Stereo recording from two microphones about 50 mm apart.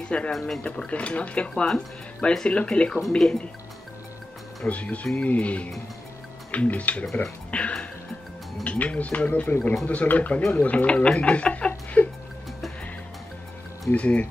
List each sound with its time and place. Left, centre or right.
0.0 s speech: left
0.3 s speech: centre
0.7 s speech: left
4.6 s speech: left
7.5 s music: left
8.6 s speech: left
12.0 s music: left
13.9 s speech: left